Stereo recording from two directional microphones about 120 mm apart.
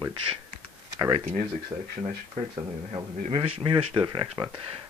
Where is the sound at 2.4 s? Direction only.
90° right.